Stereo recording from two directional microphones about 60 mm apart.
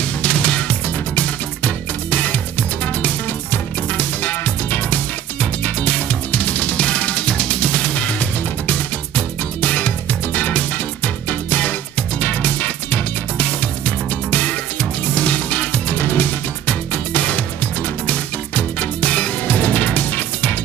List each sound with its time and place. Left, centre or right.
0.0 s music: left